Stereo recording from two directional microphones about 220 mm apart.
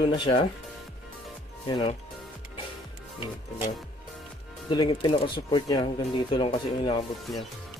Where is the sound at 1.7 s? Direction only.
20° left (ahead or behind).